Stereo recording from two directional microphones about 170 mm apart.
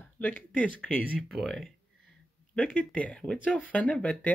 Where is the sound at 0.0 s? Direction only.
10° left (ahead or behind).